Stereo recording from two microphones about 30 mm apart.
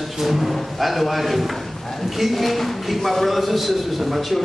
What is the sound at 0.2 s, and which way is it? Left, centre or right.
A man's voice, centre.